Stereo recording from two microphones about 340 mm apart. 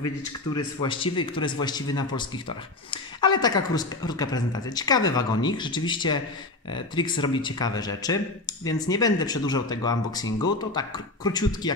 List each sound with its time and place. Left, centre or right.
0.6 s speech: centre